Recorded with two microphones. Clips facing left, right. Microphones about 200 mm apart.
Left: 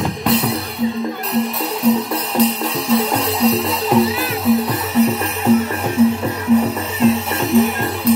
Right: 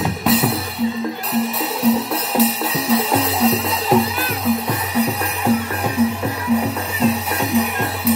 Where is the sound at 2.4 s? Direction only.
Centre (ahead or behind).